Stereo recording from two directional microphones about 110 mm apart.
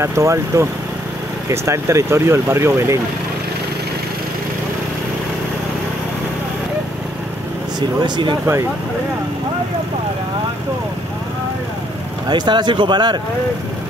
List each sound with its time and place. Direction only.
0.0 s speech: 25° right (ahead or behind)
8.0 s speech: 45° right (ahead or behind)
12.3 s speech: 40° right (ahead or behind)